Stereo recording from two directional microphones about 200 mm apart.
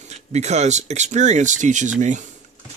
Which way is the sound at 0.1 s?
35° right (ahead or behind).